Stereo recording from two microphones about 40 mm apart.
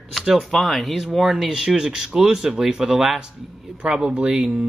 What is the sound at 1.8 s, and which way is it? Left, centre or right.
Speech, centre.